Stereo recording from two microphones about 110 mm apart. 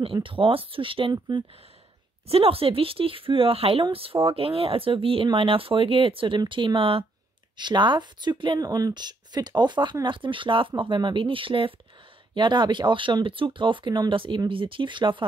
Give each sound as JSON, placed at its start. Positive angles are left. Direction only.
{"t": 0.0, "sound": "speech", "side_deg": -50}
{"t": 2.2, "sound": "speech", "side_deg": -60}
{"t": 7.5, "sound": "speech", "side_deg": -45}
{"t": 8.6, "sound": "speech", "side_deg": -35}
{"t": 12.4, "sound": "speech", "side_deg": -40}